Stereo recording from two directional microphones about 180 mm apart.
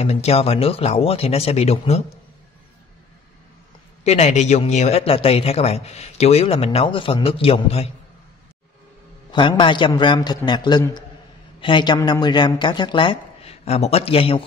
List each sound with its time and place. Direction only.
0.0 s a man's voice: 35° left (ahead or behind)
4.0 s a man's voice: 40° left (ahead or behind)
9.3 s a woman's voice: 25° left (ahead or behind)